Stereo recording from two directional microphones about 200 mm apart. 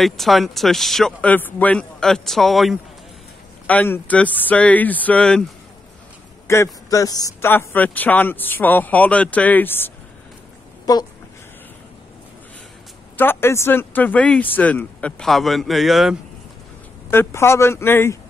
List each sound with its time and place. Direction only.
0.0 s a man's voice: centre (ahead or behind)
6.4 s a man's voice: 15° left (ahead or behind)
13.1 s a man's voice: 10° left (ahead or behind)
17.1 s a man's voice: 10° left (ahead or behind)